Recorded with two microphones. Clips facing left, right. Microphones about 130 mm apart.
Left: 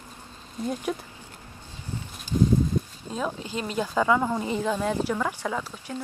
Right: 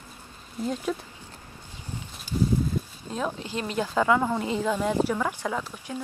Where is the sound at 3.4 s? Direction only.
10° left (ahead or behind).